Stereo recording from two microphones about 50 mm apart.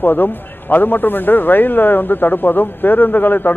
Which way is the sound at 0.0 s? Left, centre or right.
Left.